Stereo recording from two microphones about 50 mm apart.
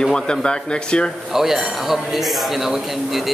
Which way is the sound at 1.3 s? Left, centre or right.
Centre.